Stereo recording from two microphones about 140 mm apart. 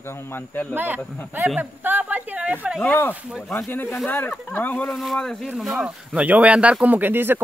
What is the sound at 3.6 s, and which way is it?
Speech, 15° left (ahead or behind).